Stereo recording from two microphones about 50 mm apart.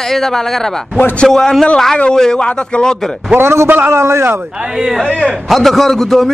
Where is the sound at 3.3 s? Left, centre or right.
Right.